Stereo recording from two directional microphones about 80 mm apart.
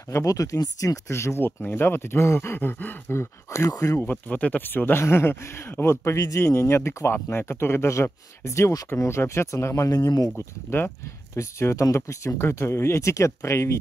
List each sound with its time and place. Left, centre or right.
0.1 s speech: left
1.0 s speech: left
3.2 s speech: left
4.0 s speech: left
9.8 s speech: left
10.3 s speech: left
11.3 s speech: left